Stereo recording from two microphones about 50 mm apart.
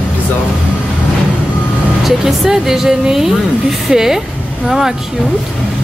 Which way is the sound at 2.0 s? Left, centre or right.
Centre.